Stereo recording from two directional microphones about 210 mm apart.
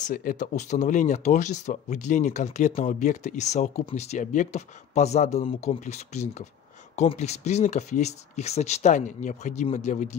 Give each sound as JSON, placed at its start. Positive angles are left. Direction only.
{"t": 0.0, "sound": "speech", "side_deg": 40}